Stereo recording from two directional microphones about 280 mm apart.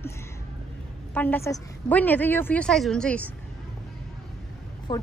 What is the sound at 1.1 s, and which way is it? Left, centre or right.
A woman's voice, centre.